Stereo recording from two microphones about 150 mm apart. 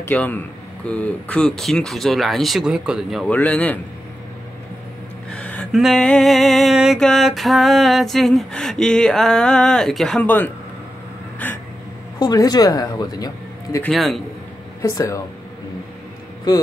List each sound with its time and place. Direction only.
0.0 s a man's voice: 10° left (ahead or behind)
0.8 s music: 10° left (ahead or behind)
3.3 s a man's voice: 10° left (ahead or behind)
5.3 s a sound: 10° left (ahead or behind)
5.7 s music: centre (ahead or behind)
11.3 s a sound: 10° left (ahead or behind)
12.2 s speech: 25° left (ahead or behind)
13.8 s music: centre (ahead or behind)
14.8 s speech: 20° left (ahead or behind)